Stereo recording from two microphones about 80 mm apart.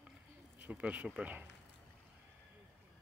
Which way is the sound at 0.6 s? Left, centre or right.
Centre.